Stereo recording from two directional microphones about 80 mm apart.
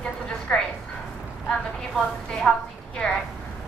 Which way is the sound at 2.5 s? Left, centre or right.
Centre.